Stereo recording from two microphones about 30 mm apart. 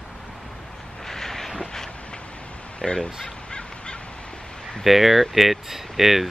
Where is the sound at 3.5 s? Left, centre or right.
Left.